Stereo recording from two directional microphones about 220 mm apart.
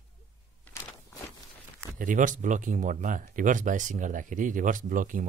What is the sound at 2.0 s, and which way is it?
Speech, 35° right (ahead or behind).